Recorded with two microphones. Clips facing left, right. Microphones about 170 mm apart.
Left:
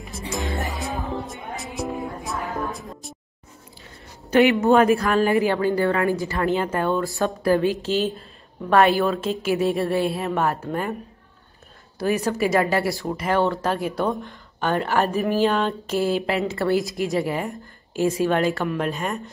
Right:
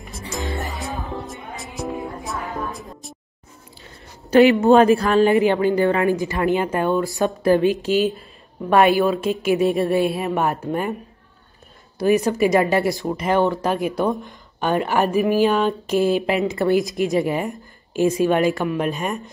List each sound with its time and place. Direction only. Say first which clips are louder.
0.5 s music: even; centre (ahead or behind)
4.3 s a woman's voice: right 4 dB; 30° right (ahead or behind); by 11.0 s 15° right (ahead or behind)
12.0 s speech: right 5 dB; 20° right (ahead or behind)